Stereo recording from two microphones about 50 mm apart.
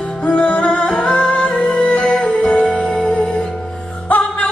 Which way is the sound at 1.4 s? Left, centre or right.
Centre.